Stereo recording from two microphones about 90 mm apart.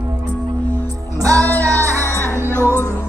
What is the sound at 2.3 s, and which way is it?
Music, 25° right (ahead or behind).